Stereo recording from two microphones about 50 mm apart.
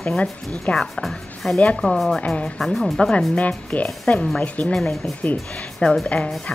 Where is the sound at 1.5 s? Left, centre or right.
Left.